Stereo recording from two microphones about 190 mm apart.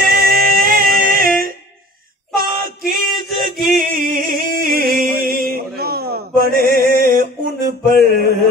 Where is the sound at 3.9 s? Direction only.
50° right (ahead or behind).